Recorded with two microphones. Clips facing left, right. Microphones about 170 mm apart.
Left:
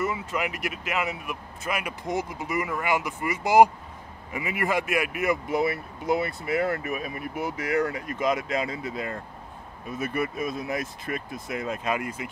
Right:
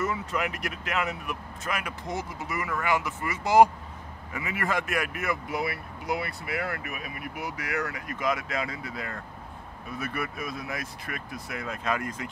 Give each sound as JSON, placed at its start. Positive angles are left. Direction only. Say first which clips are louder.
{"t": 0.0, "sound": "speech", "louder": "left 1 dB", "side_deg": 5}